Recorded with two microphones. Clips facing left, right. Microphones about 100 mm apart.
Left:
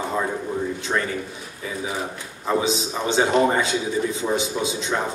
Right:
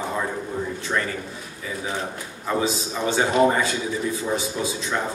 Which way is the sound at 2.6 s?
20° left (ahead or behind).